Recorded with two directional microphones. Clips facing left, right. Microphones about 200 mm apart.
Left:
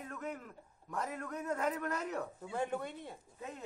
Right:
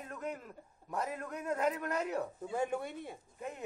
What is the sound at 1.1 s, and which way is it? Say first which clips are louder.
Speech: right 1 dB; 20° right (ahead or behind).